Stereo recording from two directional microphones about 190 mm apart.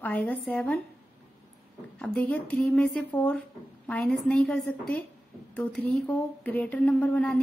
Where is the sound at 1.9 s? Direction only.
5° left (ahead or behind).